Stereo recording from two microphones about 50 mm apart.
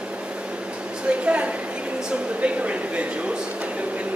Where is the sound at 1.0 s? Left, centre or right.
Right.